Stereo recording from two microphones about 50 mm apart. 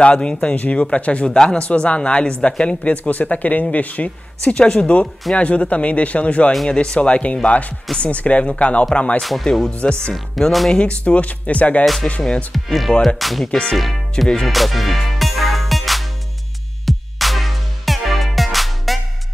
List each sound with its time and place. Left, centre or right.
0.0 s speech: left
9.2 s speech: centre
10.7 s speech: left
11.8 s speech: centre
13.5 s speech: centre
13.7 s speech: centre
14.5 s music: centre